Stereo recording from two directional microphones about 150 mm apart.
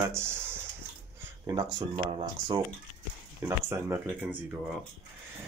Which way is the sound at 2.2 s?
30° right (ahead or behind).